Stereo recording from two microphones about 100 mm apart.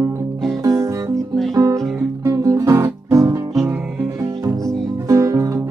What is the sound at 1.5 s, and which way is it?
Music, 30° right (ahead or behind).